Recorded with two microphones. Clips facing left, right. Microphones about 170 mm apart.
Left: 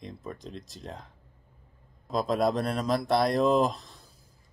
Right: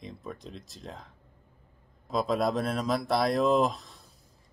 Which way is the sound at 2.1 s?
Centre (ahead or behind).